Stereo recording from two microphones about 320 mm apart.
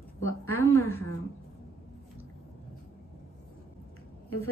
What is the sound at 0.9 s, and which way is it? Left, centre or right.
Speech, left.